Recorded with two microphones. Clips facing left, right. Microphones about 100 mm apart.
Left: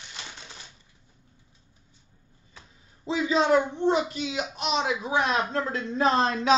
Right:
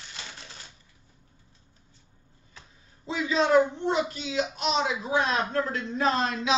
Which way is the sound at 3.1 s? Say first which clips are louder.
Left 1 dB; 25° left (ahead or behind).